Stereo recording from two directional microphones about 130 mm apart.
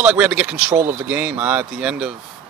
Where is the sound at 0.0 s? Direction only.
10° right (ahead or behind).